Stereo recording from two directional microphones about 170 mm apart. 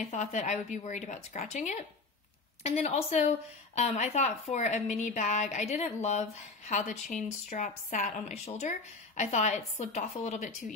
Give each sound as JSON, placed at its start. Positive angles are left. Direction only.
{"t": 0.1, "sound": "a woman's voice", "side_deg": 45}